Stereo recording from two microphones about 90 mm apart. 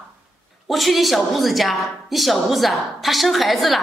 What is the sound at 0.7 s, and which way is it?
A woman's voice, centre (ahead or behind).